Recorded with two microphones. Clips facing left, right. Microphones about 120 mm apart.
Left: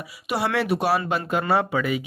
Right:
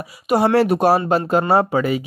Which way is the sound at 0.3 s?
40° right (ahead or behind).